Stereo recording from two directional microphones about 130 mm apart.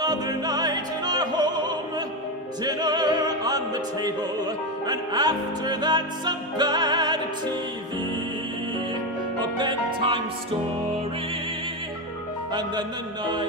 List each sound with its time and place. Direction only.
0.0 s opera: 30° right (ahead or behind)
2.6 s music: 30° right (ahead or behind)
9.6 s music: 35° right (ahead or behind)
12.5 s music: 35° right (ahead or behind)